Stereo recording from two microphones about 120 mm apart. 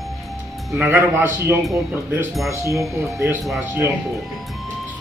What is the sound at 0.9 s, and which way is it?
Speech, 20° right (ahead or behind).